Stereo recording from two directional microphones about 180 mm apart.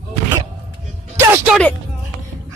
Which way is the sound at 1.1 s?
10° right (ahead or behind).